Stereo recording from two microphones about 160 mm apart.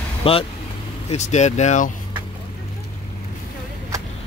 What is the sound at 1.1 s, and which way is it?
Speech, 45° left (ahead or behind).